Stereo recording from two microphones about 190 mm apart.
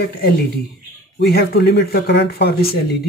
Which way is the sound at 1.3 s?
55° left (ahead or behind).